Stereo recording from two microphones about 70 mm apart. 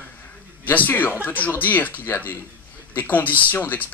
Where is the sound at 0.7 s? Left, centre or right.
Left.